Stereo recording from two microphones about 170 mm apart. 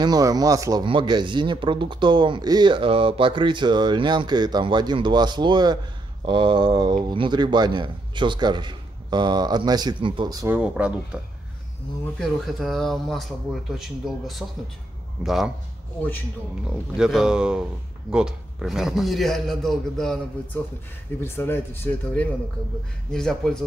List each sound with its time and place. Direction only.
0.0 s speech: 20° right (ahead or behind)
10.5 s speech: 5° right (ahead or behind)
12.2 s a man's voice: centre (ahead or behind)
16.6 s a man's voice: 5° right (ahead or behind)
21.2 s a man's voice: 15° left (ahead or behind)